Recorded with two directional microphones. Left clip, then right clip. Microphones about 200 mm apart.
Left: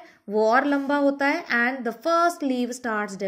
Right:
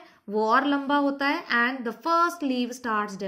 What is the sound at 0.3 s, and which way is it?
A woman's voice, 20° left (ahead or behind).